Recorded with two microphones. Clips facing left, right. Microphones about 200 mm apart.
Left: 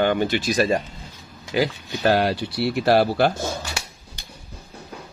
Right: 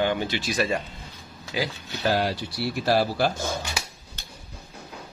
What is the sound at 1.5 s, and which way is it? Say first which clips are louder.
Speech: left 7 dB; 60° left (ahead or behind).